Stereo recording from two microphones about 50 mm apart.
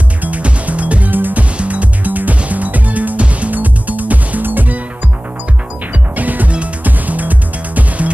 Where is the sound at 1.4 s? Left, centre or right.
Right.